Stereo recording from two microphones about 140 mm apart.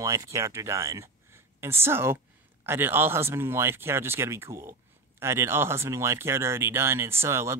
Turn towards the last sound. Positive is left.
turn(degrees=-20)  # may be behind; listen again after turning